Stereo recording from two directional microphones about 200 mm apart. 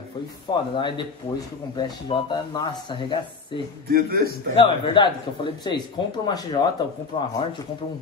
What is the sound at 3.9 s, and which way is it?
Speech, 50° right (ahead or behind).